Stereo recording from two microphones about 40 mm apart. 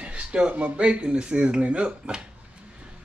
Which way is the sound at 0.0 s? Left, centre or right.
Right.